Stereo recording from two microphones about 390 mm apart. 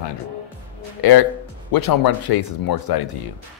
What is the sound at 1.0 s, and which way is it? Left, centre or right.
Speech, left.